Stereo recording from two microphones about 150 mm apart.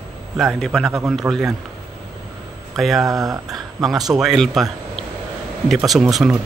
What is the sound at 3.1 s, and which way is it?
Speech, 25° right (ahead or behind).